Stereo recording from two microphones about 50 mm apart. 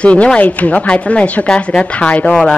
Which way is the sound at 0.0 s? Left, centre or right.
Left.